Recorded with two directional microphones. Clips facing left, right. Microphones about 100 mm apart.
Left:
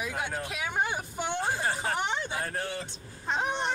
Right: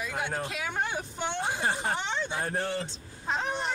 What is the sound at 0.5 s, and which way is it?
Speech, 10° left (ahead or behind).